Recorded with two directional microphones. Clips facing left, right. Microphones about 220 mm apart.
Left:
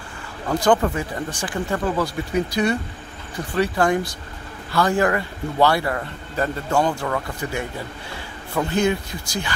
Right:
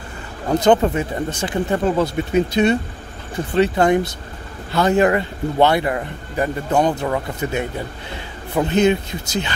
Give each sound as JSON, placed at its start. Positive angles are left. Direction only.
{"t": 0.5, "sound": "speech", "side_deg": -25}